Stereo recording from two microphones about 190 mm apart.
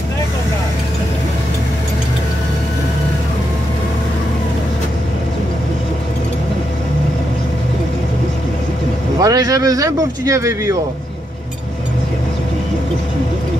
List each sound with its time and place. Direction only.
9.2 s speech: 20° right (ahead or behind)